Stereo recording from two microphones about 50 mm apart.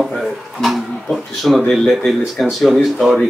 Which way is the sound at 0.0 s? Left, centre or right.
Centre.